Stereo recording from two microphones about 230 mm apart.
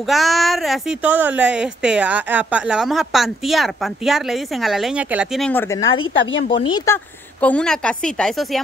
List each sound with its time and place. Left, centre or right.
0.0 s a woman's voice: centre
5.9 s speech: left
6.6 s speech: centre
7.3 s a woman's voice: centre